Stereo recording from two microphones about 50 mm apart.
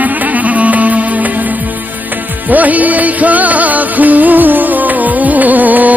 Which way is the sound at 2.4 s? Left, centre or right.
Right.